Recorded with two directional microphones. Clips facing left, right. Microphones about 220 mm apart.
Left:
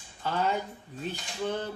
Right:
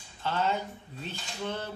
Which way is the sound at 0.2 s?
10° left (ahead or behind).